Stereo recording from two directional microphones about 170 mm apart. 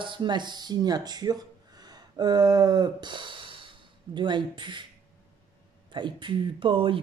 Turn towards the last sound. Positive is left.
turn(degrees=-30)  # may be behind; listen again after turning